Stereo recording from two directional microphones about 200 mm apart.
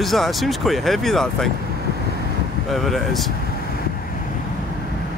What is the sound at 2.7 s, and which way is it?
Speech, centre (ahead or behind).